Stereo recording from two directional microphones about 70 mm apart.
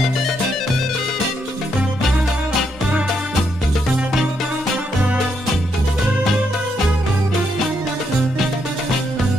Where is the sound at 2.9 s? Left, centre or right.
Centre.